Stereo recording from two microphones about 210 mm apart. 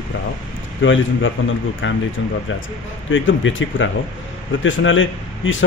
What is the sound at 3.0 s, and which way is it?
Speech, 65° left (ahead or behind).